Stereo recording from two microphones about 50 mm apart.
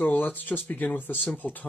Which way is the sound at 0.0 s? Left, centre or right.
Left.